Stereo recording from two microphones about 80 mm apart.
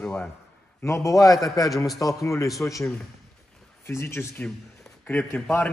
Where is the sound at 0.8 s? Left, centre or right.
Left.